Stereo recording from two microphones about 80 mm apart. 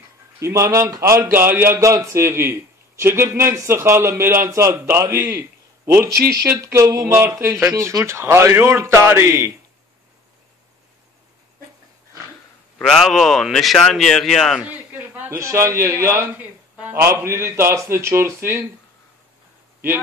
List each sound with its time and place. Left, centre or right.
0.4 s a man's voice: right
1.8 s a man's voice: right
6.4 s a man's voice: right
12.8 s speech: centre
14.6 s a sound: right
15.2 s a man's voice: right